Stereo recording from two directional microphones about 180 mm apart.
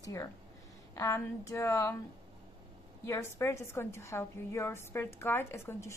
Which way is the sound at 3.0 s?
15° left (ahead or behind).